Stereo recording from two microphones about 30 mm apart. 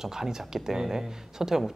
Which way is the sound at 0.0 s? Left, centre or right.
Centre.